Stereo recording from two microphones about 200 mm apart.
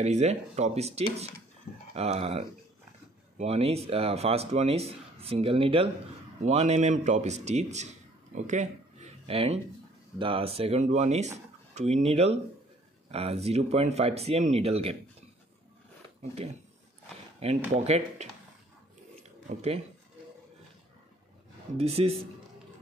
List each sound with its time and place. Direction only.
0.0 s speech: 35° right (ahead or behind)
8.5 s a sound: 35° right (ahead or behind)
10.1 s speech: 25° right (ahead or behind)
17.4 s speech: 30° right (ahead or behind)
19.5 s speech: 30° right (ahead or behind)
21.7 s speech: 30° right (ahead or behind)